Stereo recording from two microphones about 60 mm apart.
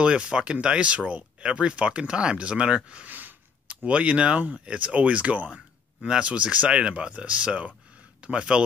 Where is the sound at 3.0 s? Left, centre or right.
Right.